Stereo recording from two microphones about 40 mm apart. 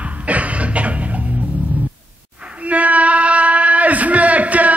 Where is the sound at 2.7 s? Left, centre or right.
Right.